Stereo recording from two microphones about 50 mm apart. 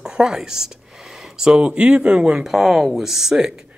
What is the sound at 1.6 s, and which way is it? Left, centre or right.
Speech, right.